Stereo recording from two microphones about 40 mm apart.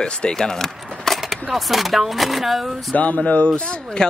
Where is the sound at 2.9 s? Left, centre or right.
Left.